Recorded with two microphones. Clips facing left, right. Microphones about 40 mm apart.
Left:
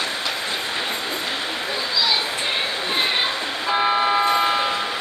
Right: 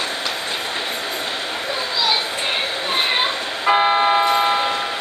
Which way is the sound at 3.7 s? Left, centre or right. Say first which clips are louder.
Right 4 dB; right.